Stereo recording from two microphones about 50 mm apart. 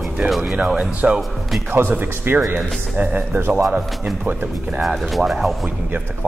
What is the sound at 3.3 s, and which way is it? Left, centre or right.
Speech, right.